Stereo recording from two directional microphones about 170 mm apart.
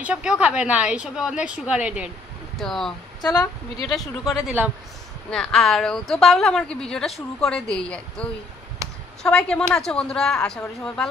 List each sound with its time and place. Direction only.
0.0 s a woman's voice: 5° right (ahead or behind)
3.2 s speech: 25° left (ahead or behind)
4.3 s a woman's voice: centre (ahead or behind)